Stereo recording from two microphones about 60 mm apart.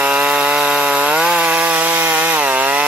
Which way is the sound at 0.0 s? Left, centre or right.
Right.